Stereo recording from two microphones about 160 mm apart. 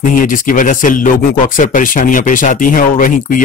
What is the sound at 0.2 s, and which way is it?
A man's voice, 55° left (ahead or behind).